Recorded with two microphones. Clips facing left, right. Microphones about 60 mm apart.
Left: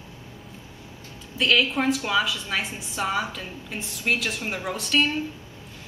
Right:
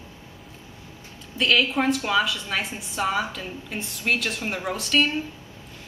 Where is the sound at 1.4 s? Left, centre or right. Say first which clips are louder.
Even; centre.